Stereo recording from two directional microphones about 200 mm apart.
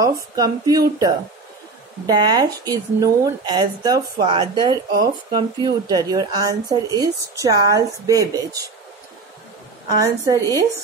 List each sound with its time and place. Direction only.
0.0 s speech: 15° right (ahead or behind)
2.1 s speech: 20° right (ahead or behind)
9.9 s speech: 20° right (ahead or behind)